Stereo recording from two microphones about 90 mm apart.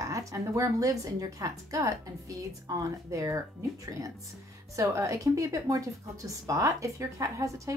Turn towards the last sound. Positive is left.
turn(degrees=-35)  # may be behind; listen again after turning